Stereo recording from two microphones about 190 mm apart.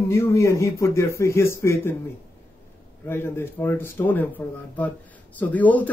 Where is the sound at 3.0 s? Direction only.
10° left (ahead or behind).